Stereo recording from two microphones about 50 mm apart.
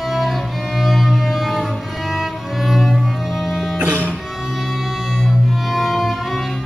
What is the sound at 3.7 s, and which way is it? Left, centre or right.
Music, right.